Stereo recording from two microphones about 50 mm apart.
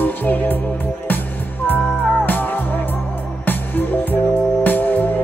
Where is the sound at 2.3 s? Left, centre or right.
Left.